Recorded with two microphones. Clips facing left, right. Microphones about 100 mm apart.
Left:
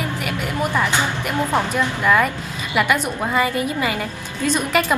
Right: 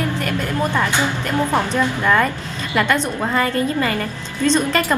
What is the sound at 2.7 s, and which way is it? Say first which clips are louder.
A woman's voice: right 1 dB; 10° left (ahead or behind).